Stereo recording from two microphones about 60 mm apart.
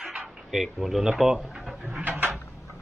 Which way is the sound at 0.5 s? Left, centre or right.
Centre.